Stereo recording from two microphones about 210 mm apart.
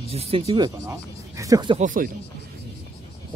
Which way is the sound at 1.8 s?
40° right (ahead or behind).